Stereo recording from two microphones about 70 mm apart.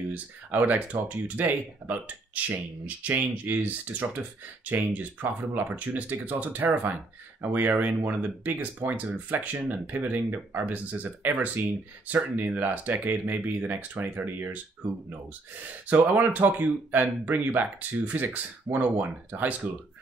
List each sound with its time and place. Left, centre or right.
0.1 s speech: right
16.2 s speech: right